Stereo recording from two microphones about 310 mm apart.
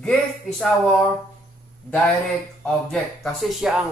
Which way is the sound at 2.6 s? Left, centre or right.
Centre.